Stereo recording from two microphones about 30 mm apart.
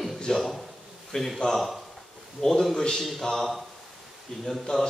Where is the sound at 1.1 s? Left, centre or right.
Left.